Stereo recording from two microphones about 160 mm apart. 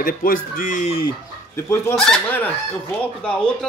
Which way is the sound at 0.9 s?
35° left (ahead or behind).